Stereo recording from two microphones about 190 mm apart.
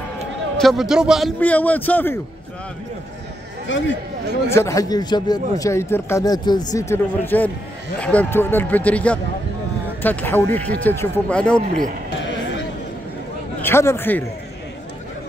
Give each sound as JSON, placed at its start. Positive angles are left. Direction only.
{"t": 0.6, "sound": "a man's voice", "side_deg": 0}
{"t": 1.4, "sound": "a man's voice", "side_deg": 10}
{"t": 3.6, "sound": "speech", "side_deg": 75}
{"t": 4.6, "sound": "a man's voice", "side_deg": 15}
{"t": 13.6, "sound": "a man's voice", "side_deg": 10}